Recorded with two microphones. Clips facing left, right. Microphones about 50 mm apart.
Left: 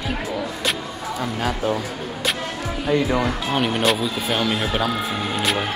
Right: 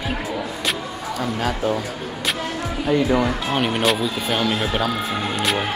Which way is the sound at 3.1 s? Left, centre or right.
Centre.